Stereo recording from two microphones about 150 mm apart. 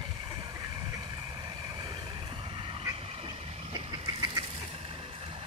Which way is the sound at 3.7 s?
30° right (ahead or behind).